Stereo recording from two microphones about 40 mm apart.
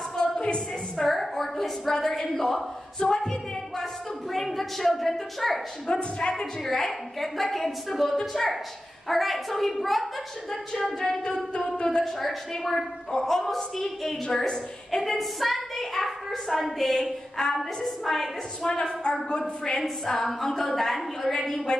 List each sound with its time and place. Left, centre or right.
1.0 s a woman's voice: centre
3.0 s a woman's voice: centre
5.9 s a woman's voice: left
6.6 s a woman's voice: centre
11.0 s a woman's voice: centre
12.0 s a woman's voice: centre
14.2 s a woman's voice: centre
18.7 s a woman's voice: centre
20.1 s a woman's voice: centre